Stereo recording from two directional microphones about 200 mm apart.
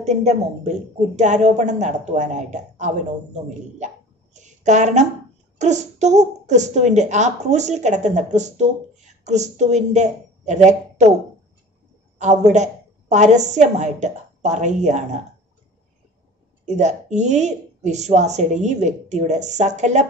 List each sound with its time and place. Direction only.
0.0 s a woman's voice: 35° right (ahead or behind)
3.4 s a sound: 35° right (ahead or behind)
5.6 s a woman's voice: 35° right (ahead or behind)
12.2 s a woman's voice: 35° right (ahead or behind)
16.6 s a woman's voice: 35° right (ahead or behind)